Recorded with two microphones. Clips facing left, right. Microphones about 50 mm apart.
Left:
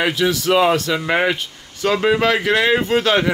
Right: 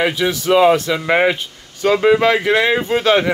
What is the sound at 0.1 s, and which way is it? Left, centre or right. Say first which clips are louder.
Speech: right 1 dB; centre.